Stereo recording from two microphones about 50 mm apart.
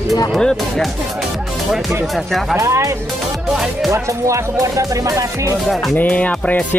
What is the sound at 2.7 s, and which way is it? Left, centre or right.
Speech, right.